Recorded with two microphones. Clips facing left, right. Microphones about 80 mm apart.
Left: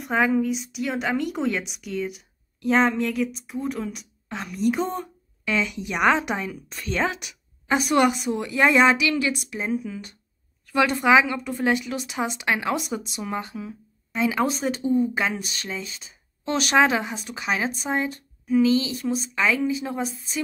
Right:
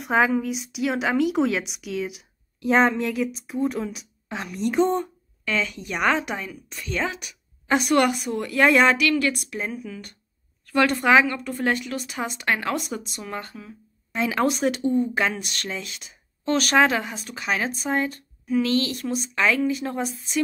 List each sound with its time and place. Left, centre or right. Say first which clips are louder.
0.0 s a woman's voice: right 1 dB; centre
5.4 s a woman's voice: left 1 dB; centre
8.2 s a woman's voice: even; centre
10.7 s speech: even; centre
11.2 s speech: even; centre
11.5 s a woman's voice: left 3 dB; centre